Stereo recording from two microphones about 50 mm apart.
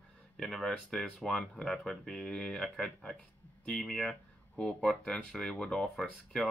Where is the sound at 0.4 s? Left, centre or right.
Centre.